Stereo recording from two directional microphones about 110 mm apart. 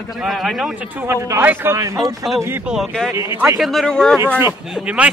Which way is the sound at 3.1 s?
25° right (ahead or behind).